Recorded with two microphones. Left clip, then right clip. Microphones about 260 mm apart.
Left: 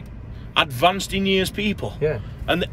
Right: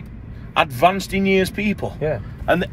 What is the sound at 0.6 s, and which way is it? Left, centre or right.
Speech, centre.